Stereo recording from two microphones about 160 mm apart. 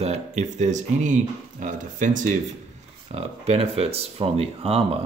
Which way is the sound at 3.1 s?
40° right (ahead or behind).